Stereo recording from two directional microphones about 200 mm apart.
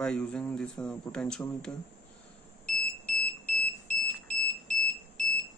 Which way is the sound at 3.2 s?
5° left (ahead or behind).